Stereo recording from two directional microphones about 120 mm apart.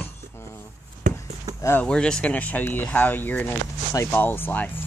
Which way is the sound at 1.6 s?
20° left (ahead or behind).